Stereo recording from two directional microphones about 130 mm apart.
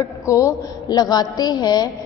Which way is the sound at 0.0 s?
25° left (ahead or behind).